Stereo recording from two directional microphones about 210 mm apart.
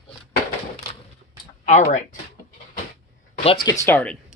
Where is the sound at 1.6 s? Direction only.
35° left (ahead or behind).